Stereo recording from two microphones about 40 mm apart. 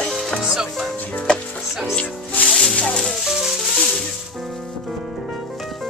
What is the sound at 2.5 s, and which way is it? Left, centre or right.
Music, centre.